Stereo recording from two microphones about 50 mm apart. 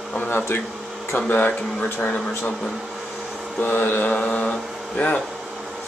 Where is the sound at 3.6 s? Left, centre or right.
Left.